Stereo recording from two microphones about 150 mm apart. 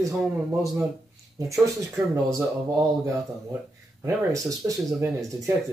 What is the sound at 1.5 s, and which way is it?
Speech, 20° right (ahead or behind).